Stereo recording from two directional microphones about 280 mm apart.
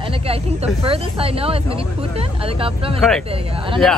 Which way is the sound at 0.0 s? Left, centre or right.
Centre.